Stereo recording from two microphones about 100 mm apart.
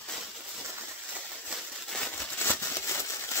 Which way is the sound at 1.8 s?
5° left (ahead or behind).